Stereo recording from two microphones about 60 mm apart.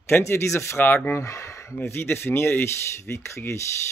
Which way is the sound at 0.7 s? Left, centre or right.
Left.